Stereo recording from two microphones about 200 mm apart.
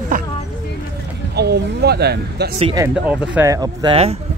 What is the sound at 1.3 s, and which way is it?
Speech, 55° right (ahead or behind).